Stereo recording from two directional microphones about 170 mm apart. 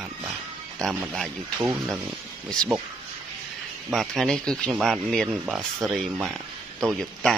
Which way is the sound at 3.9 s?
Centre (ahead or behind).